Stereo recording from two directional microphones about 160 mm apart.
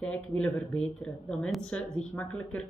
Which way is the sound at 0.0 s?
5° left (ahead or behind).